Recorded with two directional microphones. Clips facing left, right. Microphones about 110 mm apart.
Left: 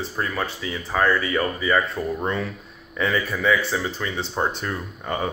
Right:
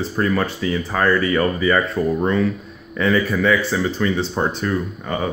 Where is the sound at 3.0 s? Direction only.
15° left (ahead or behind).